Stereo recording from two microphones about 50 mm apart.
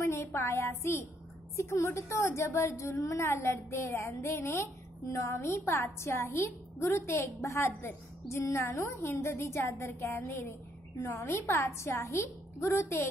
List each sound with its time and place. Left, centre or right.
0.0 s a woman's voice: left
1.6 s a woman's voice: left